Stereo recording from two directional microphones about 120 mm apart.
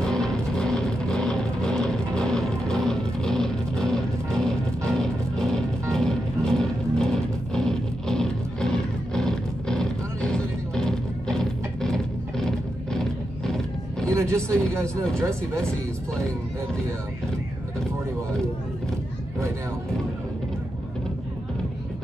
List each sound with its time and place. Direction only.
0.0 s vehicle: 5° left (ahead or behind)
14.0 s speech: 25° right (ahead or behind)